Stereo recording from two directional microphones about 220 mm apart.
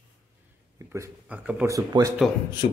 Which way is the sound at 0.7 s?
15° right (ahead or behind).